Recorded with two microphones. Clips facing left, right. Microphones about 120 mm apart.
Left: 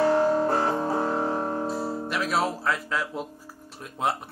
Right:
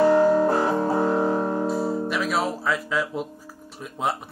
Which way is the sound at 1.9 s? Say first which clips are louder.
Right 3 dB; centre (ahead or behind).